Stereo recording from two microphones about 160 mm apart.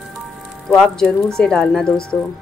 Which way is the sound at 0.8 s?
5° left (ahead or behind).